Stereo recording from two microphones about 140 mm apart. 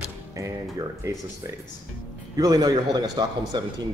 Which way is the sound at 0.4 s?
20° right (ahead or behind).